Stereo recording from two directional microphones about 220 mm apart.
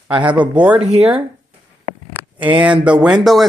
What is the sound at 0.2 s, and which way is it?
Speech, 5° right (ahead or behind).